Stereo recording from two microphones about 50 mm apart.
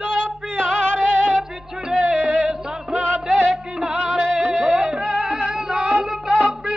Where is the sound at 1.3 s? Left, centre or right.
Centre.